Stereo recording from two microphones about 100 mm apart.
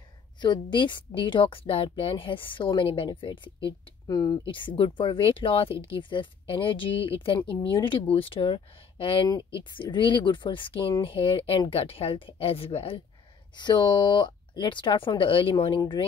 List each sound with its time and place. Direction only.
0.4 s speech: 50° left (ahead or behind)
4.1 s speech: 40° left (ahead or behind)
4.5 s speech: 55° left (ahead or behind)
13.6 s speech: 50° left (ahead or behind)